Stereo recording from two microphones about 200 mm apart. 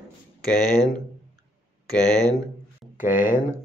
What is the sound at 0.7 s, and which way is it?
Speech, 20° right (ahead or behind).